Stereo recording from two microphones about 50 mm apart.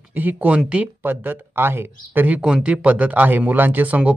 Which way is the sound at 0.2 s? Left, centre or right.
Right.